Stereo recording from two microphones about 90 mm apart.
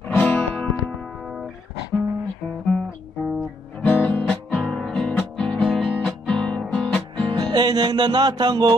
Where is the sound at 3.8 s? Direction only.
20° left (ahead or behind).